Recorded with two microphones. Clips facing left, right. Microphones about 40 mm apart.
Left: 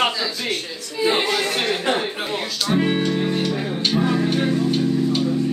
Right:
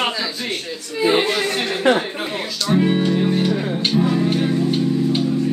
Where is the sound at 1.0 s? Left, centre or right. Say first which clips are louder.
Right 2 dB; centre.